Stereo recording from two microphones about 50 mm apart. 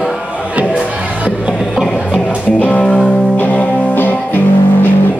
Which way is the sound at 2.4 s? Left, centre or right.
Left.